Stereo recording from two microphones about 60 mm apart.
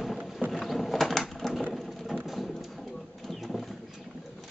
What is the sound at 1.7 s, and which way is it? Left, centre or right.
Ratchet, centre.